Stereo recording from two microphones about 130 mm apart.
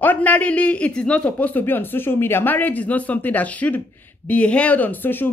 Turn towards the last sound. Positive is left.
turn(degrees=15)  # may be behind; listen again after turning